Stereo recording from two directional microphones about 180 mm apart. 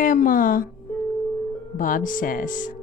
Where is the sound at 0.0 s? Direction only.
45° left (ahead or behind).